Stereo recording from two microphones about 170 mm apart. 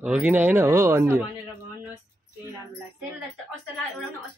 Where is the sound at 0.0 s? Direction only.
10° right (ahead or behind).